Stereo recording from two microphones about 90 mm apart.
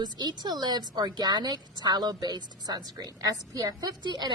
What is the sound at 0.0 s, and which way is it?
A woman's voice, 50° right (ahead or behind).